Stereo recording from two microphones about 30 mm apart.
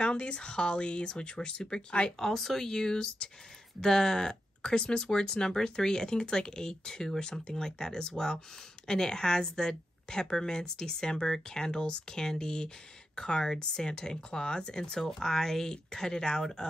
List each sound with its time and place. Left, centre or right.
0.0 s speech: left
2.0 s speech: centre